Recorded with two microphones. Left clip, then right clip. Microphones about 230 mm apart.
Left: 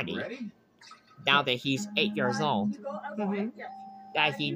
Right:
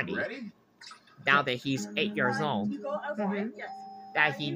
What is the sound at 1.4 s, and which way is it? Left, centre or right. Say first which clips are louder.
Speech: left 2 dB; left.